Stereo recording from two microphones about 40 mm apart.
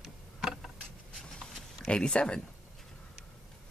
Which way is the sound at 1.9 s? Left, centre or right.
Left.